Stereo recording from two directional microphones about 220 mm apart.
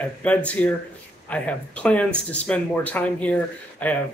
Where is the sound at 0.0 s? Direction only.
5° left (ahead or behind).